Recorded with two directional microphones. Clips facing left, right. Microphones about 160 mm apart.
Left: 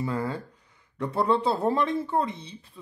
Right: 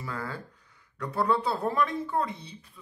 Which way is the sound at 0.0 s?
25° left (ahead or behind).